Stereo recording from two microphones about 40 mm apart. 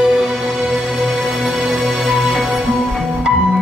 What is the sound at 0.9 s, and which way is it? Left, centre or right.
Music, centre.